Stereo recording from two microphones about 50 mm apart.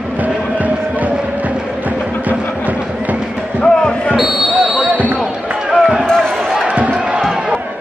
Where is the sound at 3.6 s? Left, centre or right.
Centre.